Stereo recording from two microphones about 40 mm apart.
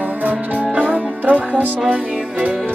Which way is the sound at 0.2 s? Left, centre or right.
Right.